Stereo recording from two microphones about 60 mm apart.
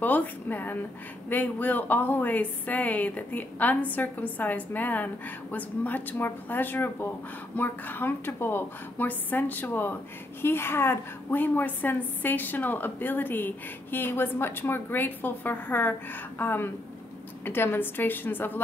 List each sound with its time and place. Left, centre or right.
0.0 s a woman's voice: left